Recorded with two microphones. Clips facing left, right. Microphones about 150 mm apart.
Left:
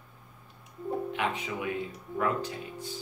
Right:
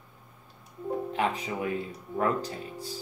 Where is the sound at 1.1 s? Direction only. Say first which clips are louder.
Right 3 dB; 35° right (ahead or behind).